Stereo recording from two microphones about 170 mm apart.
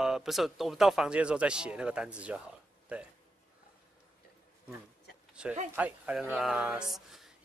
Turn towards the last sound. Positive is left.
turn(degrees=0)  # may be behind; listen again after turning